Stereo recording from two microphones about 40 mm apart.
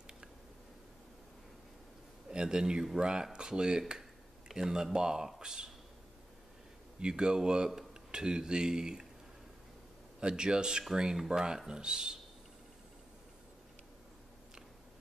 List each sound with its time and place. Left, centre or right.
2.3 s speech: centre
7.0 s speech: right
10.2 s speech: centre